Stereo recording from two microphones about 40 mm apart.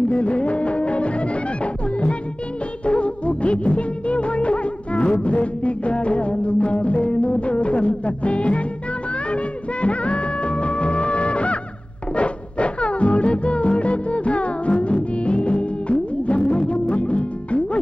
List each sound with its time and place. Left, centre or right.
0.1 s music: left
2.9 s music of bollywood: left
5.2 s music: left